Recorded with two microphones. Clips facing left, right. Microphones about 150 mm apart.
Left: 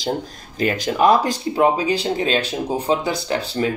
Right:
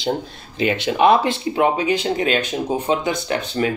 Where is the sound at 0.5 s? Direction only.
40° left (ahead or behind).